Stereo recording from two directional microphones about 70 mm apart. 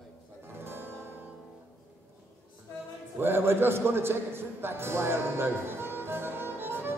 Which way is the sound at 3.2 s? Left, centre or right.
Right.